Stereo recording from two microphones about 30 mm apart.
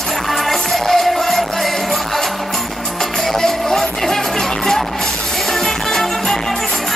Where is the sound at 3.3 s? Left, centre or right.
Centre.